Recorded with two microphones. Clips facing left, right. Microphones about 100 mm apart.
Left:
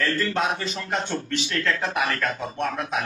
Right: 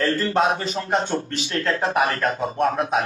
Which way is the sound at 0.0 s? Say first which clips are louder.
Right 4 dB; 30° right (ahead or behind).